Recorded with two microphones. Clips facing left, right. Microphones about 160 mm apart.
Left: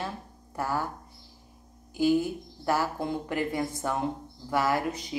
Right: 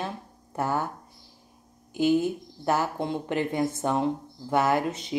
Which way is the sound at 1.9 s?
20° right (ahead or behind).